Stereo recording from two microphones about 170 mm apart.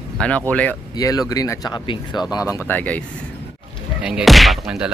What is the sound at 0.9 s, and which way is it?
Speech, 20° left (ahead or behind).